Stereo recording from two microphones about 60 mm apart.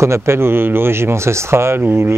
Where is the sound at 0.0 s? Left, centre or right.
Right.